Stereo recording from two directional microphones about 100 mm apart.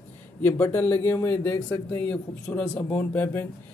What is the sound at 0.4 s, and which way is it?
Speech, 20° left (ahead or behind).